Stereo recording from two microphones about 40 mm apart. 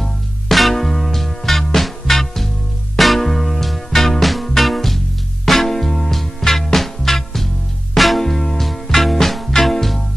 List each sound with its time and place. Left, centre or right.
0.5 s music: centre